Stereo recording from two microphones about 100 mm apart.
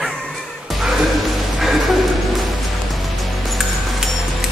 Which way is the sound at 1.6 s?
Centre (ahead or behind).